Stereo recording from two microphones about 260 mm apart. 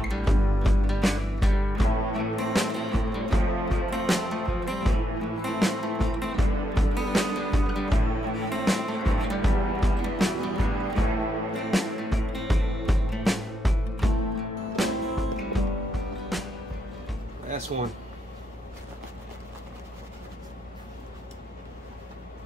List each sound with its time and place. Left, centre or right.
0.0 s music: centre